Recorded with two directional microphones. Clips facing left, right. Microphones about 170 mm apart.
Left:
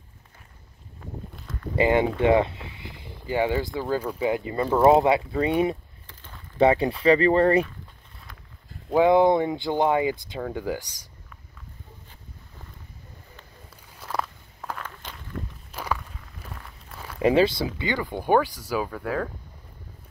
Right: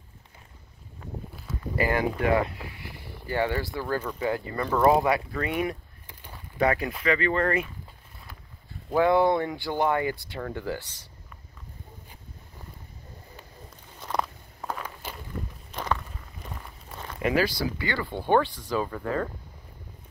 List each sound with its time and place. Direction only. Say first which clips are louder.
1.3 s a sound: right 1 dB; 5° right (ahead or behind)
1.8 s speech: left 5 dB; 25° left (ahead or behind)
6.0 s a sound: right 1 dB; 10° right (ahead or behind)
6.6 s speech: left 6 dB; 30° left (ahead or behind)
8.9 s speech: left 3 dB; 20° left (ahead or behind)
13.9 s a sound: right 1 dB; 5° left (ahead or behind)
14.6 s walk: right 1 dB; 10° right (ahead or behind)
15.7 s walk: right 1 dB; 10° left (ahead or behind)
16.0 s walk: right 1 dB; 5° right (ahead or behind)
17.2 s speech: left 5 dB; 25° left (ahead or behind); by 19.2 s centre (ahead or behind)